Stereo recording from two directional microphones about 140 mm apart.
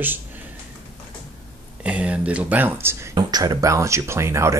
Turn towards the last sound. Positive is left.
turn(degrees=-20)  # may be behind; listen again after turning